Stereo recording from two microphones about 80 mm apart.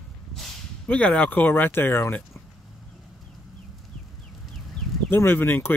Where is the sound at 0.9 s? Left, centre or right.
Centre.